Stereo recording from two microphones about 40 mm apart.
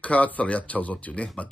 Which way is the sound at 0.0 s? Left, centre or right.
Left.